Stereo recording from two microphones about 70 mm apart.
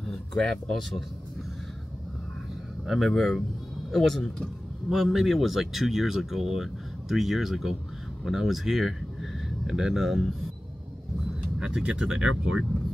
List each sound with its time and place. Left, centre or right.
0.0 s a sound: centre
2.9 s speech: centre
4.8 s speech: centre
11.6 s speech: centre